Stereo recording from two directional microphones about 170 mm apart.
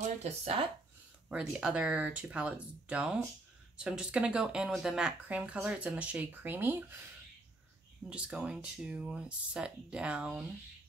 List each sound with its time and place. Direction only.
0.2 s speech: 35° right (ahead or behind)
1.3 s speech: 5° right (ahead or behind)
8.1 s speech: 5° right (ahead or behind)